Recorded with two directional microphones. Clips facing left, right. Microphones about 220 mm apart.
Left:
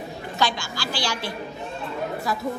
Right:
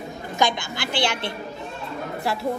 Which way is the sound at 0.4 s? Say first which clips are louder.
Right 3 dB; 20° right (ahead or behind).